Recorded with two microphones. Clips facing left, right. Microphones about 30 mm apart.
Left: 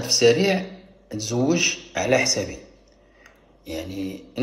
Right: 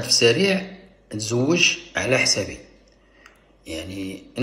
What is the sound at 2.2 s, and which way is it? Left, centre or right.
Speech, right.